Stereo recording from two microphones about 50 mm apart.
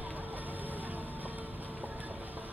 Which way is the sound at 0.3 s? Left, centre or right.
Right.